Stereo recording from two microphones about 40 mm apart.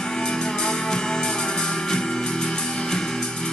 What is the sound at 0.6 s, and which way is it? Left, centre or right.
Music, centre.